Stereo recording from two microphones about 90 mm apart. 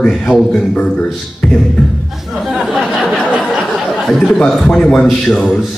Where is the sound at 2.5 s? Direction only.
Centre (ahead or behind).